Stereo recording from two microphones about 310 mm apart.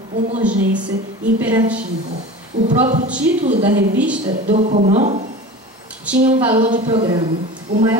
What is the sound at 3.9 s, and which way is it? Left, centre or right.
Speech, centre.